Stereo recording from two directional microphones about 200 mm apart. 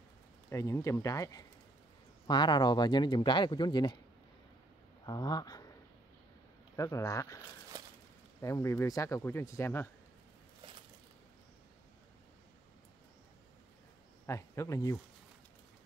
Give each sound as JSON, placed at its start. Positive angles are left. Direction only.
{"t": 0.5, "sound": "speech", "side_deg": 15}
{"t": 5.0, "sound": "speech", "side_deg": 20}
{"t": 6.8, "sound": "speech", "side_deg": 15}
{"t": 8.4, "sound": "speech", "side_deg": 15}
{"t": 14.2, "sound": "speech", "side_deg": 15}